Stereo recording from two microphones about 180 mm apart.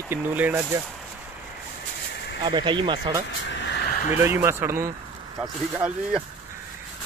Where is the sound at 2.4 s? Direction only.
25° right (ahead or behind).